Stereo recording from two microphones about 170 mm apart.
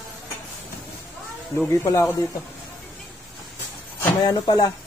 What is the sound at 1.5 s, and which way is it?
Speech, 15° left (ahead or behind).